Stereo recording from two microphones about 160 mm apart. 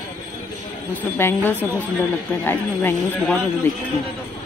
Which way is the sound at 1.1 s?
15° left (ahead or behind).